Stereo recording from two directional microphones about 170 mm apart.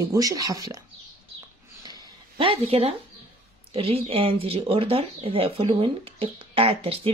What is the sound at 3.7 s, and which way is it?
Speech, 35° right (ahead or behind).